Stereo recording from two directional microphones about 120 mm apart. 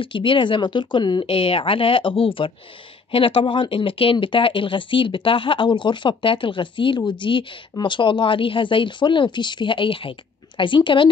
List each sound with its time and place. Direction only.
0.0 s speech: 45° left (ahead or behind)